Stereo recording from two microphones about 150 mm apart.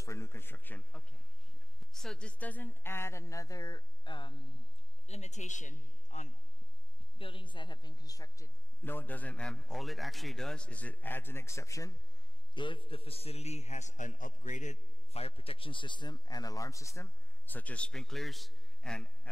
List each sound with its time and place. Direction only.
0.0 s a man's voice: 20° left (ahead or behind)
5.0 s a man's voice: 45° left (ahead or behind)
7.2 s a woman's voice: 35° left (ahead or behind)
12.5 s a man's voice: 35° left (ahead or behind); by 19.0 s 5° left (ahead or behind)